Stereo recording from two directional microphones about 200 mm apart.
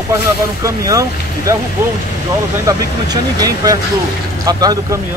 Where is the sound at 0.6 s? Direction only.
15° right (ahead or behind).